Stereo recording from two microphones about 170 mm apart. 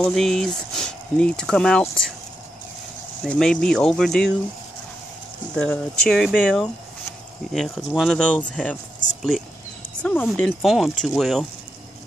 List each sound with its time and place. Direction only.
0.0 s speech: 5° left (ahead or behind)
3.3 s speech: 5° left (ahead or behind)
5.6 s speech: 5° left (ahead or behind)
10.0 s speech: 5° left (ahead or behind)